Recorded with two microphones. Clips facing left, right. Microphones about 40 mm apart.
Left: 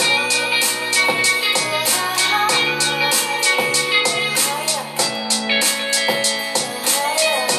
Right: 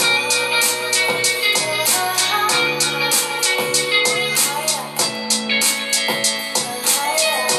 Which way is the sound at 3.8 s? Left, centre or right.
Centre.